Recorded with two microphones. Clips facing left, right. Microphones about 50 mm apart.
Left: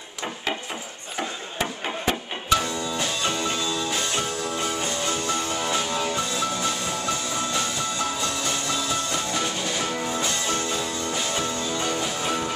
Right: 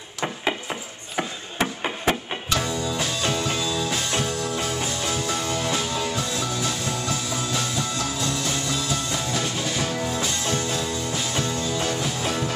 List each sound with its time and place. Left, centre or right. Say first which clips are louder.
1.1 s chop: right 2 dB; centre
2.5 s music: left 2 dB; centre